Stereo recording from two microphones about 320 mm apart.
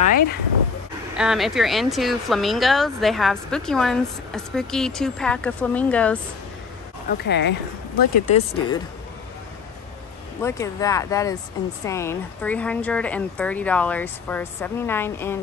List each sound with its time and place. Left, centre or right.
0.0 s speech: left
1.1 s speech: centre
7.1 s speech: left
8.5 s speech: centre
10.4 s speech: centre